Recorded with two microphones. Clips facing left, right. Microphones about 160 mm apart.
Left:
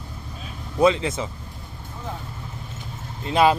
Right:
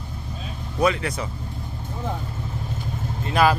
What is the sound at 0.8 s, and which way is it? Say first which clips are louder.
Speech: left 3 dB; 25° left (ahead or behind).